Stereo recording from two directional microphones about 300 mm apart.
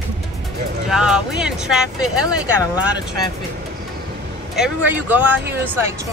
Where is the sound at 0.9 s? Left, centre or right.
Centre.